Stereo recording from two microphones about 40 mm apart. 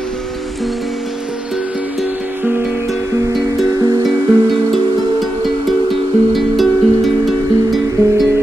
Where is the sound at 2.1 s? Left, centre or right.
Right.